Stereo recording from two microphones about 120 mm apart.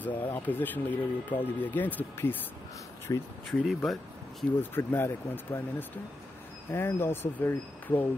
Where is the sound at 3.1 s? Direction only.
25° left (ahead or behind).